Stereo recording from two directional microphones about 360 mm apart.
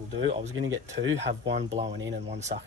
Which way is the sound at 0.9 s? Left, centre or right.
Right.